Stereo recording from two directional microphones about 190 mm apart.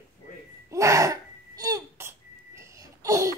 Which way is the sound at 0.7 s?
15° right (ahead or behind).